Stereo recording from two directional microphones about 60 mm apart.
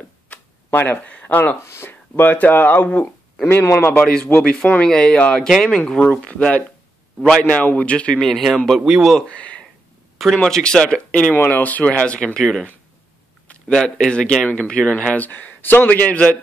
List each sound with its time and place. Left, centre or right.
0.3 s a sound: left
0.7 s speech: left
1.6 s speech: left
1.9 s speech: left
4.0 s a man's voice: centre
7.2 s speech: centre
7.4 s a man's voice: left; by 8.5 s centre
8.8 s a man's voice: centre
9.3 s a man's voice: left